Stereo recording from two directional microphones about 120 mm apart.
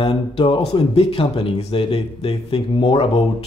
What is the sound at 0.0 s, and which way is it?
Speech, 50° left (ahead or behind).